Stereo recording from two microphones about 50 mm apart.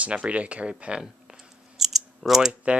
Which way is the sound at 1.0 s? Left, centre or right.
Centre.